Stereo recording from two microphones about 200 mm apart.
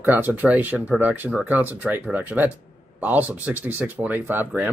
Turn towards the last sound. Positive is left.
turn(degrees=-5)  # may be behind; listen again after turning